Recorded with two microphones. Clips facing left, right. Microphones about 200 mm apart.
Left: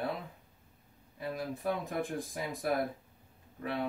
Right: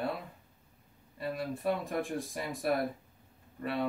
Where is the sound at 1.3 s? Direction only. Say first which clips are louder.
Right 2 dB; centre (ahead or behind).